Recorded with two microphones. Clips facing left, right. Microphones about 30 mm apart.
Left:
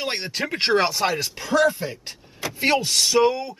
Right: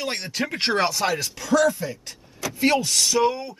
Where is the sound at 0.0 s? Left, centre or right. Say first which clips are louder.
Left 1 dB; left.